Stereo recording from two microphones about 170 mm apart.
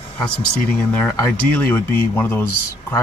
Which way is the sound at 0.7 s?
10° left (ahead or behind).